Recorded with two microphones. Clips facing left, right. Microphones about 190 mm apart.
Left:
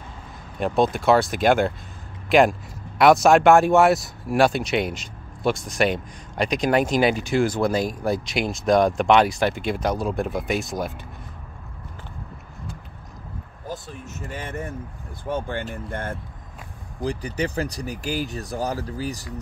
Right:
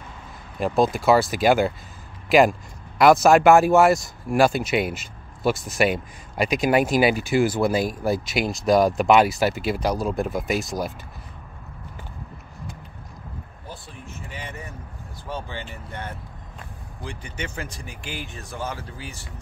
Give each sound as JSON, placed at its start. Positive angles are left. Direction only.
{"t": 0.6, "sound": "speech", "side_deg": 0}
{"t": 13.7, "sound": "a sound", "side_deg": 45}
{"t": 15.2, "sound": "speech", "side_deg": 55}
{"t": 17.0, "sound": "speech", "side_deg": 35}